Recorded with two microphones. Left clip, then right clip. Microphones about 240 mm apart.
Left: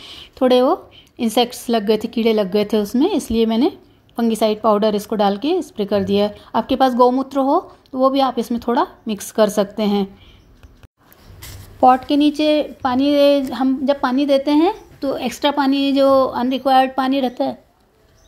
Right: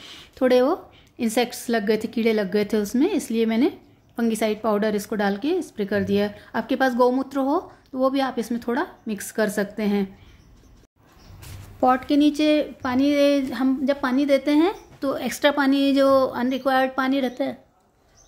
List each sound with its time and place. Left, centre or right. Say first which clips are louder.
0.0 s a woman's voice: left 5 dB; centre
11.8 s a woman's voice: left 6 dB; centre